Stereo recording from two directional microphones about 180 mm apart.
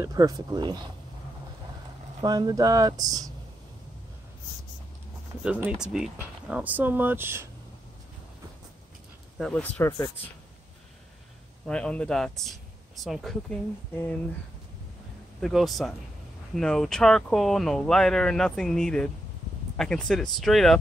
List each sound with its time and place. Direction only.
0.0 s speech: 20° right (ahead or behind)
2.2 s speech: 20° right (ahead or behind)
5.4 s speech: 10° right (ahead or behind)
9.4 s speech: 10° left (ahead or behind)
11.6 s speech: 5° left (ahead or behind)
15.4 s speech: centre (ahead or behind)